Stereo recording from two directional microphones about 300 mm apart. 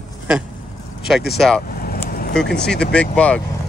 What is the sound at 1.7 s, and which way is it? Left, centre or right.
Vehicle, left.